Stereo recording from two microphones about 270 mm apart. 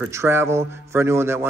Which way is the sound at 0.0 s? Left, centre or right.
Centre.